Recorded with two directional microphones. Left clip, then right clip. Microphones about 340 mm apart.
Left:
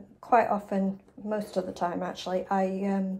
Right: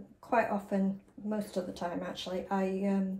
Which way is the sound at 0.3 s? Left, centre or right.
Centre.